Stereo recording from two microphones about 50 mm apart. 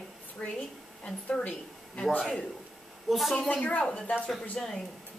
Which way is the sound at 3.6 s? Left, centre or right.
Left.